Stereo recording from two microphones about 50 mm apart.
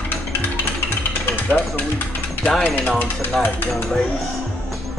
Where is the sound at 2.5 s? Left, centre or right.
Centre.